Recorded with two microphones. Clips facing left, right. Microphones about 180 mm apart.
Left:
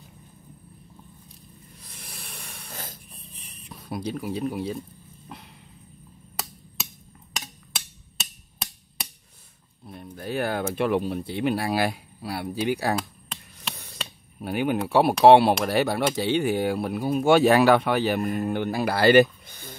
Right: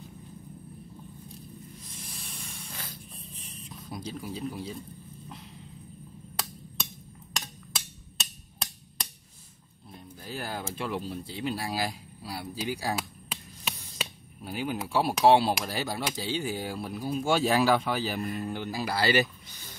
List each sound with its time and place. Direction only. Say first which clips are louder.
1.8 s spray: right 1 dB; 65° left (ahead or behind)
2.7 s a sound: left 6 dB; 45° left (ahead or behind)
3.2 s a sound: right 3 dB; 65° left (ahead or behind)
7.3 s hammer: left 1 dB; 5° left (ahead or behind)
9.8 s speech: left 8 dB; 65° left (ahead or behind)
12.9 s chop: left 5 dB; 5° right (ahead or behind)
14.4 s speech: left 8 dB; 60° left (ahead or behind)
18.3 s speech: left 7 dB; 55° left (ahead or behind)